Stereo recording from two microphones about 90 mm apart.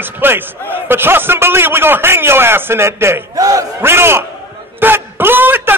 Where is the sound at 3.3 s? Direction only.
40° right (ahead or behind).